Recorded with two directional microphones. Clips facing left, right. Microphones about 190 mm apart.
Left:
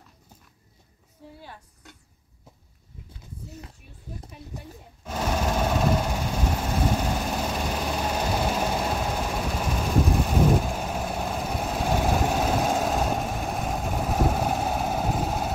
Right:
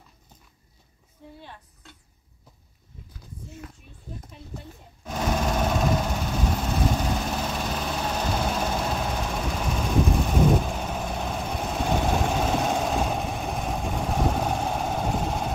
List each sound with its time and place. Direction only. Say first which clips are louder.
4.3 s sewing machine: even; 5° left (ahead or behind)
6.0 s vehicle: even; 10° left (ahead or behind)